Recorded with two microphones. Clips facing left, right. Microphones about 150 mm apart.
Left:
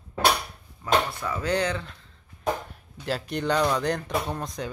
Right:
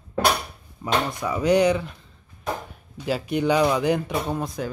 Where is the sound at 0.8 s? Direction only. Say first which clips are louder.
Right 1 dB; 20° right (ahead or behind).